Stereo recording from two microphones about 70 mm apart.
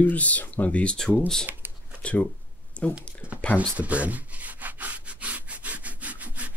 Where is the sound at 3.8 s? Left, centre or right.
Centre.